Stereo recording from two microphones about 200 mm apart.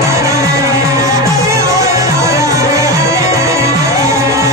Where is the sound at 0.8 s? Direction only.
15° right (ahead or behind).